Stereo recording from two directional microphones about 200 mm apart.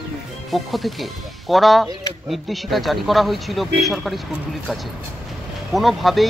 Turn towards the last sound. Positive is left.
turn(degrees=0)  # may be behind; listen again after turning